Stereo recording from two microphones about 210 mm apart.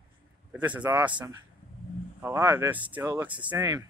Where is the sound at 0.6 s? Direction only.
5° right (ahead or behind).